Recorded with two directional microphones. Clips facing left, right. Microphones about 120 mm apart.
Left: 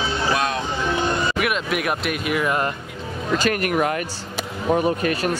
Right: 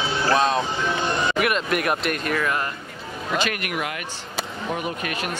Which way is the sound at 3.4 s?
40° left (ahead or behind).